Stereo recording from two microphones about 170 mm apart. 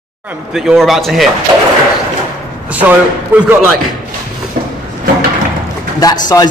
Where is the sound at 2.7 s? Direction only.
10° right (ahead or behind).